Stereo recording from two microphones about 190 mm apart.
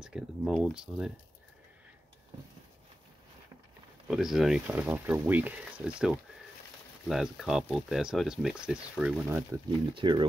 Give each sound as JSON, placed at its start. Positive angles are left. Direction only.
{"t": 0.0, "sound": "speech", "side_deg": -5}
{"t": 4.1, "sound": "speech", "side_deg": 0}
{"t": 9.9, "sound": "speech", "side_deg": -25}